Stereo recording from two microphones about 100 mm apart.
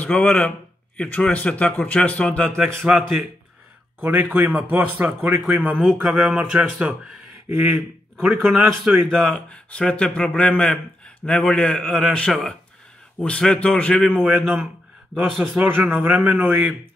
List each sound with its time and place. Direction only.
0.0 s a man's voice: 10° left (ahead or behind)
2.9 s a man's voice: centre (ahead or behind)
4.0 s a man's voice: 15° right (ahead or behind)
6.0 s a man's voice: 5° right (ahead or behind)
9.0 s a man's voice: 10° left (ahead or behind)
14.2 s a man's voice: centre (ahead or behind)
15.5 s a man's voice: 20° right (ahead or behind)